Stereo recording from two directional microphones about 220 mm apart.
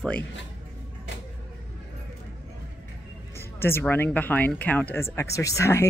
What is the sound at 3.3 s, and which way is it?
Speech, 10° left (ahead or behind).